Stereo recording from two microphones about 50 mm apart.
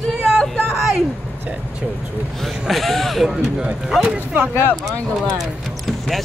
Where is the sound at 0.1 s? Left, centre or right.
Centre.